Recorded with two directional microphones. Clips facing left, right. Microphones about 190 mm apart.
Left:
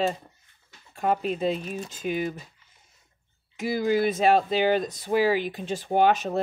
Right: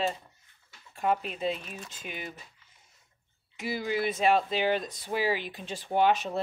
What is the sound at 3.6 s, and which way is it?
Speech, 45° left (ahead or behind).